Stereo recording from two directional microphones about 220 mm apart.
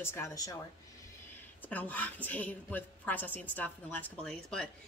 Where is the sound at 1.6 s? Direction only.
5° left (ahead or behind).